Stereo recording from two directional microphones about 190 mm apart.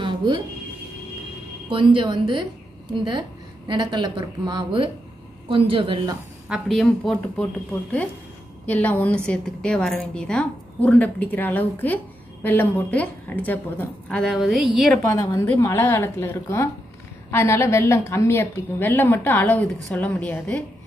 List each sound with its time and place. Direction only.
0.0 s a sound: 25° right (ahead or behind)
1.7 s a woman's voice: 25° right (ahead or behind)
6.5 s a woman's voice: centre (ahead or behind)
8.6 s a woman's voice: 10° left (ahead or behind)
15.0 s a woman's voice: 15° left (ahead or behind)